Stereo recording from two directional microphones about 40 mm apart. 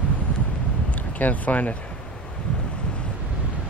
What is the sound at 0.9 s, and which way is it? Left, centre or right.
Speech, left.